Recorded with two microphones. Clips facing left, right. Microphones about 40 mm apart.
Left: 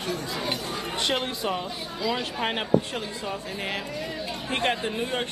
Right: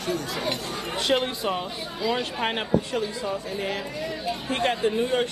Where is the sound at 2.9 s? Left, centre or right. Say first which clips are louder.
Right 4 dB; left.